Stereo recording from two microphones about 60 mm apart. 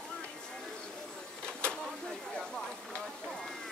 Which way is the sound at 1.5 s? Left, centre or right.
Centre.